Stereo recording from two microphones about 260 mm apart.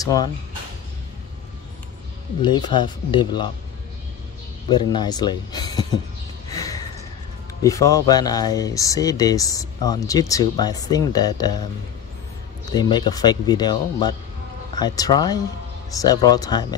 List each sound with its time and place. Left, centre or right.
0.0 s speech: centre
2.4 s speech: centre
4.6 s speech: centre
6.5 s a sound: centre
7.6 s speech: centre
12.7 s speech: centre